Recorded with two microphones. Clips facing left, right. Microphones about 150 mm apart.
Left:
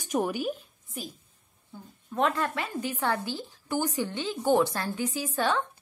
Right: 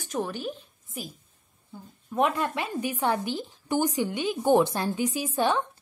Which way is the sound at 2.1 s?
15° right (ahead or behind).